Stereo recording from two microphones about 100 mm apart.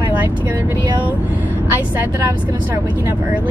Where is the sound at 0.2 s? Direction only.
20° right (ahead or behind).